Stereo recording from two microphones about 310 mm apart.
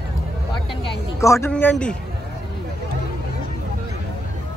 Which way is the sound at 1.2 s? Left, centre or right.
Centre.